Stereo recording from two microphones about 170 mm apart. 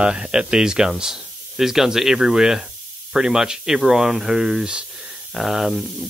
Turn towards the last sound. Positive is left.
turn(degrees=0)  # may be behind; listen again after turning